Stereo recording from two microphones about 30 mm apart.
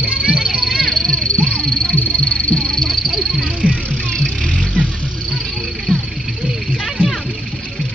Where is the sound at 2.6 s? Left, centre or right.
Left.